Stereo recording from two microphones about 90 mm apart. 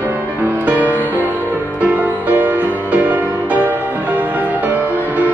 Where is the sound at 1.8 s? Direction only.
15° right (ahead or behind).